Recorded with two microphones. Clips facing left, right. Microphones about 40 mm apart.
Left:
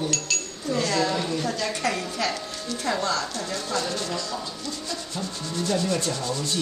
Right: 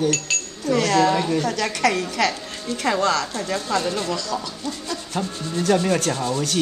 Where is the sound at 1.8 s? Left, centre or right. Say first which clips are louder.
Right 7 dB; right.